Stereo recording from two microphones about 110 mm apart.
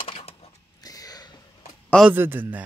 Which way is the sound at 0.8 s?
35° left (ahead or behind).